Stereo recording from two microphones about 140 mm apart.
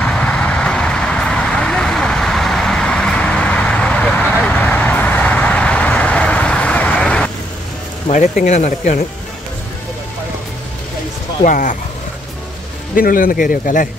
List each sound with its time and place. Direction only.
0.0 s vehicle: 10° left (ahead or behind)
8.1 s speech: 60° left (ahead or behind)
11.4 s speech: 70° left (ahead or behind)
12.9 s speech: 85° left